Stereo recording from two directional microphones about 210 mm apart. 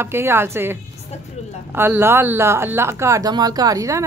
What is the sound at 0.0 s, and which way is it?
Speech, 10° right (ahead or behind).